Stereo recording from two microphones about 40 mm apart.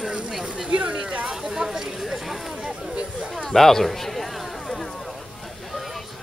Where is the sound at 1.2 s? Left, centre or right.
Centre.